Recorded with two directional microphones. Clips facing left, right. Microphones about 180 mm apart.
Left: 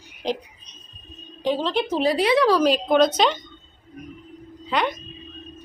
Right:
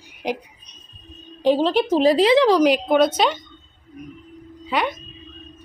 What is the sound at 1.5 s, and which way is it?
Speech, 40° right (ahead or behind).